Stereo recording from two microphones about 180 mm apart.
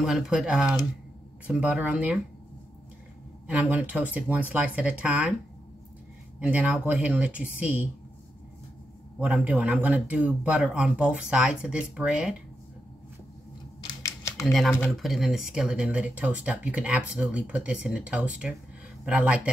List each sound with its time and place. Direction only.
0.0 s speech: centre (ahead or behind)
3.4 s speech: 10° right (ahead or behind)
6.4 s speech: 10° right (ahead or behind)
9.2 s speech: 5° right (ahead or behind)
13.8 s a sound: 15° left (ahead or behind)
14.4 s speech: centre (ahead or behind)